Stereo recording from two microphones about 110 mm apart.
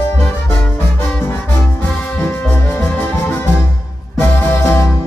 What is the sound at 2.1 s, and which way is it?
Music, 20° left (ahead or behind).